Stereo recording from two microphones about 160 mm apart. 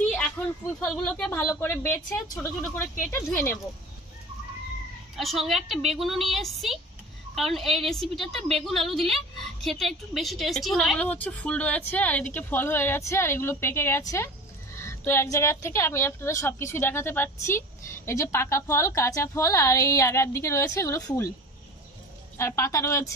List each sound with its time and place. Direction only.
0.8 s a woman's voice: 5° left (ahead or behind)
1.3 s a woman's voice: 20° left (ahead or behind)
5.1 s a woman's voice: centre (ahead or behind); by 21.3 s 20° left (ahead or behind)
22.4 s a woman's voice: 20° left (ahead or behind)